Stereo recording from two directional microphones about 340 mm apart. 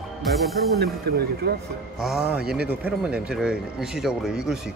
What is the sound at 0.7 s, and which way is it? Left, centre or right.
Speech, right.